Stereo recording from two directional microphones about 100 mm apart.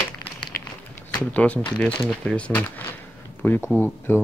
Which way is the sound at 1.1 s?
15° left (ahead or behind).